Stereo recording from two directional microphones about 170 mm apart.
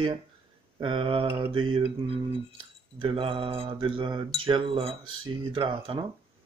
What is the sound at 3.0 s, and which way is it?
Mantra, 30° right (ahead or behind).